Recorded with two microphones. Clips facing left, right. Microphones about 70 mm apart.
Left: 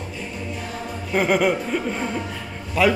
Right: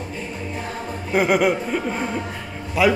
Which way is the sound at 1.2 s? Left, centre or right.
Centre.